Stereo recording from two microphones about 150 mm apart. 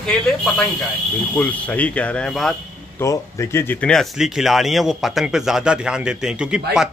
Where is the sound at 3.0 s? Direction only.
20° left (ahead or behind).